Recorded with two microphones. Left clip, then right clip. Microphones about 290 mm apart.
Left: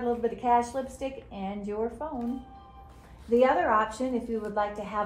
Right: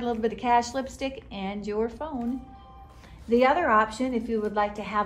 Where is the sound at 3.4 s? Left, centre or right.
Right.